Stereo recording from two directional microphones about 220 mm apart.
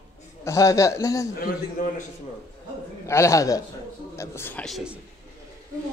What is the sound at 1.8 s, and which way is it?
Speech, 35° left (ahead or behind).